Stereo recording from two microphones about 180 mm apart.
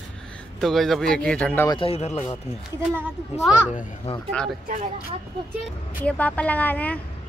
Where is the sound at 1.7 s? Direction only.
30° left (ahead or behind).